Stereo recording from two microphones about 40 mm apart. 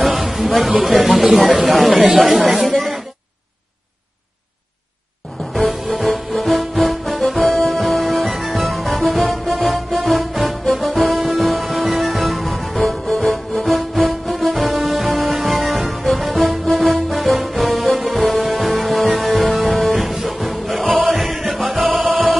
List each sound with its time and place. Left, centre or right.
0.0 s a sound: centre
0.8 s speech: centre
2.0 s speech: right
2.5 s speech: centre
5.9 s music: centre